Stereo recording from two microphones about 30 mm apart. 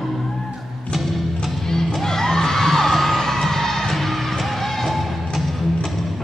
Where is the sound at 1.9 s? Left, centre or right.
Centre.